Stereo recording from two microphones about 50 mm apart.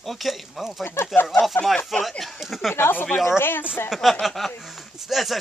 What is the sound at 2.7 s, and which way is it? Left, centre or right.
Speech, left.